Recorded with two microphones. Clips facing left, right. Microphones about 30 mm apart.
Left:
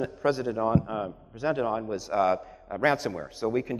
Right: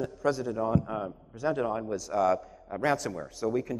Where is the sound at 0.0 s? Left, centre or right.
Left.